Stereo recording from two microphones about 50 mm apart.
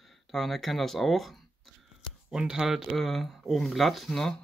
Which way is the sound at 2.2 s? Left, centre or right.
Centre.